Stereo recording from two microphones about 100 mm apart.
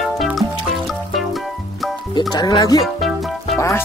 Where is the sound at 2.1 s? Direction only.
45° left (ahead or behind).